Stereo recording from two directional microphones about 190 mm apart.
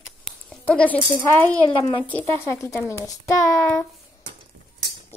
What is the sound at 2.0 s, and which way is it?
A child's voice, 10° left (ahead or behind).